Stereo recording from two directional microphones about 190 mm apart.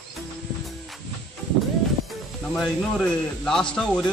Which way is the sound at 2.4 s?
Centre (ahead or behind).